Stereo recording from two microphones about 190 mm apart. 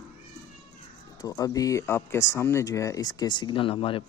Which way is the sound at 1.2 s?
20° left (ahead or behind).